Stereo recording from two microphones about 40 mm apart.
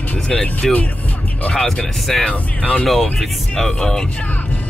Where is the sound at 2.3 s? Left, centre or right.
Left.